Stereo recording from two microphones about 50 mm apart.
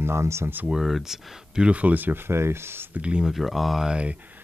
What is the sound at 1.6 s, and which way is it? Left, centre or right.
Speech, right.